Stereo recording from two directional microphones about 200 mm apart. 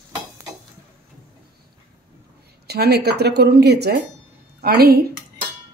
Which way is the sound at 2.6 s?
55° right (ahead or behind).